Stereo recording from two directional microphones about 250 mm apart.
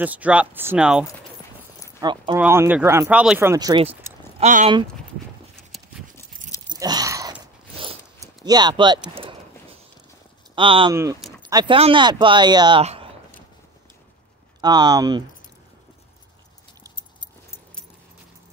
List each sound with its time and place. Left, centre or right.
0.0 s speech: centre
2.0 s speech: centre
6.7 s biting: centre
8.5 s speech: centre
9.1 s a sound: right
10.5 s speech: centre
11.1 s a sound: centre
11.4 s speech: centre
14.6 s speech: centre
16.9 s keys jangling: centre